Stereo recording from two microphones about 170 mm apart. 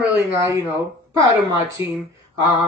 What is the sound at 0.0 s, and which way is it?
Speech, 20° right (ahead or behind).